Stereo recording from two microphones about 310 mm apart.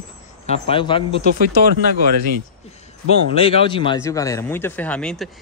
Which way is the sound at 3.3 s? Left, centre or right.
Centre.